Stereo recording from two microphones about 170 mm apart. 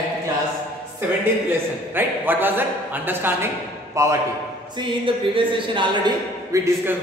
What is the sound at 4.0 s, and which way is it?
Speech, 15° right (ahead or behind).